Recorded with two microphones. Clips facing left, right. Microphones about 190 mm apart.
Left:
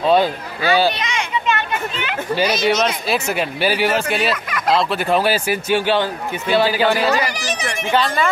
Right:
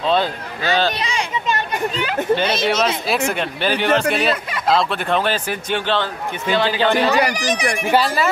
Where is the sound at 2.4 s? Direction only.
25° right (ahead or behind).